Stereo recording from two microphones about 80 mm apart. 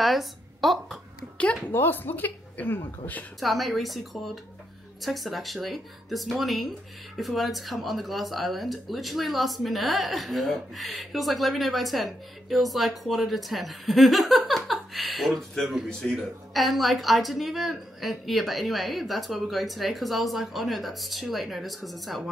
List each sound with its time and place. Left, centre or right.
0.0 s a woman's voice: centre
1.4 s a woman's voice: left
3.3 s speech: centre